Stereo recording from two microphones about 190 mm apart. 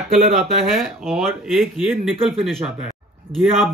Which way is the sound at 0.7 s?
Centre (ahead or behind).